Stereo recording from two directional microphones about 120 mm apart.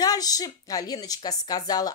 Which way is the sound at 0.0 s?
30° left (ahead or behind).